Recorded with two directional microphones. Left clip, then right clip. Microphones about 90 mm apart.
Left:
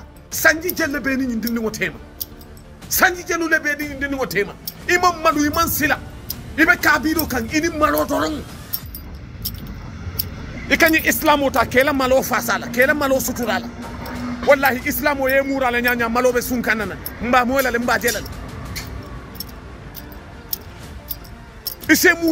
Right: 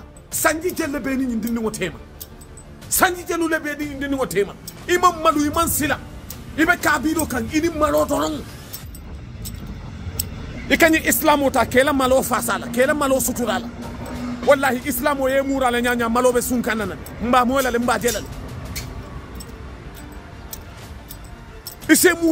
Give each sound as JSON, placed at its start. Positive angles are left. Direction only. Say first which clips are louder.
{"t": 0.4, "sound": "speech", "louder": "left 4 dB", "side_deg": -45}
{"t": 4.0, "sound": "speech", "louder": "right 2 dB", "side_deg": -60}
{"t": 5.3, "sound": "speech", "louder": "left 1 dB", "side_deg": -40}
{"t": 7.2, "sound": "speech", "louder": "left 1 dB", "side_deg": -55}
{"t": 10.7, "sound": "speech", "louder": "left 1 dB", "side_deg": -90}
{"t": 13.8, "sound": "music", "louder": "left 2 dB", "side_deg": 0}
{"t": 14.5, "sound": "speech", "louder": "left 2 dB", "side_deg": -50}
{"t": 21.8, "sound": "speech", "louder": "left 1 dB", "side_deg": -50}